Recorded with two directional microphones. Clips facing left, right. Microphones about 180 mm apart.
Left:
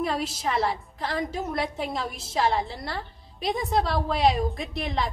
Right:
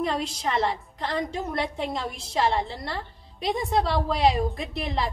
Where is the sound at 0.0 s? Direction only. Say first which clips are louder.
Even; 5° left (ahead or behind).